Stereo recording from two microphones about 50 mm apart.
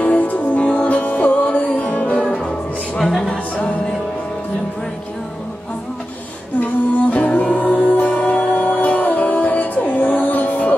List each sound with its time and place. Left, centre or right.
0.0 s music: left
3.0 s music: centre
3.3 s music: left
6.6 s music: left